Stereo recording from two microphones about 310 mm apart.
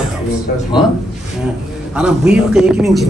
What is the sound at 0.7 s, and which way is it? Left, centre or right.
Speech, centre.